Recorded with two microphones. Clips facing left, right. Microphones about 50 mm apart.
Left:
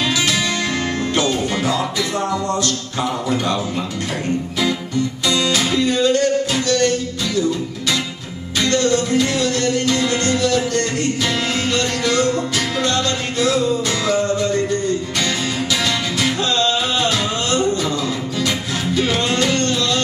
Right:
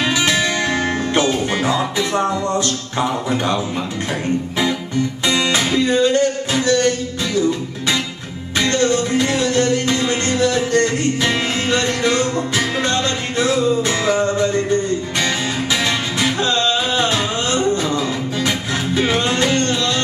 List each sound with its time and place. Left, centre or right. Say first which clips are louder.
0.0 s music: right 2 dB; right
5.2 s music: right 1 dB; right
8.5 s music: even; right
18.9 s music: right 1 dB; right